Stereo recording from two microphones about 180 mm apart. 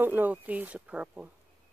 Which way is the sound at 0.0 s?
10° right (ahead or behind).